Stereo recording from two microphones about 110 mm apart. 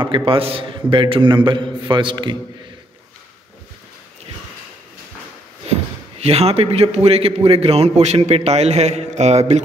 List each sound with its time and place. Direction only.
0.0 s a man's voice: 50° right (ahead or behind)
6.2 s a man's voice: 65° right (ahead or behind); by 9.6 s 85° right